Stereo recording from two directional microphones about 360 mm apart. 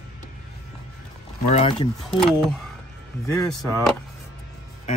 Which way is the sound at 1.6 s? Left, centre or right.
Centre.